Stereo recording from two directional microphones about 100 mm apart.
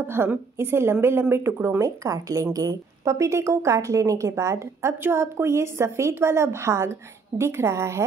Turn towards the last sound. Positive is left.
turn(degrees=-30)  # may be behind; listen again after turning